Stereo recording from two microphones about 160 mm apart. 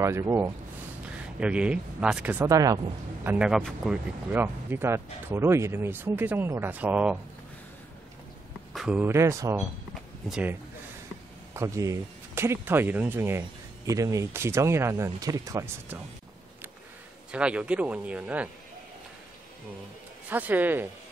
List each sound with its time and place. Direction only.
0.0 s speech: 15° right (ahead or behind)
3.3 s a man's voice: 5° right (ahead or behind)
4.3 s speech: 15° right (ahead or behind)
8.7 s speech: 5° right (ahead or behind)
10.2 s a man's voice: 5° right (ahead or behind)
11.5 s speech: 20° right (ahead or behind)
17.3 s speech: 5° right (ahead or behind)
20.2 s speech: 10° right (ahead or behind)